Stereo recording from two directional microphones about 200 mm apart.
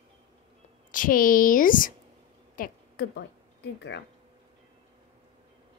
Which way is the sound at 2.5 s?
45° left (ahead or behind).